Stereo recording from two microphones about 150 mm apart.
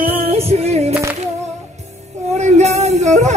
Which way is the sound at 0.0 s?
40° right (ahead or behind).